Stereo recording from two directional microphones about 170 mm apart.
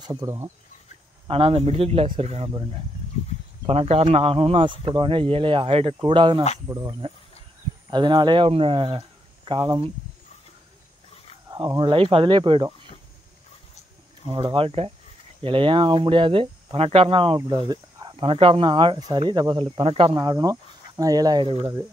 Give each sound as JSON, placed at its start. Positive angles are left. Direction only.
{"t": 0.0, "sound": "speech", "side_deg": -20}
{"t": 1.2, "sound": "speech", "side_deg": -35}
{"t": 3.6, "sound": "speech", "side_deg": -35}
{"t": 11.5, "sound": "speech", "side_deg": -25}
{"t": 14.2, "sound": "speech", "side_deg": -30}
{"t": 20.2, "sound": "speech", "side_deg": -20}